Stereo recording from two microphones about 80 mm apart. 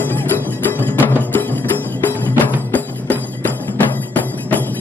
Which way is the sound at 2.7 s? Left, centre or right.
Left.